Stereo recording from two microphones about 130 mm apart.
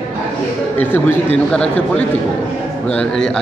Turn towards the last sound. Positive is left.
turn(degrees=5)  # may be behind; listen again after turning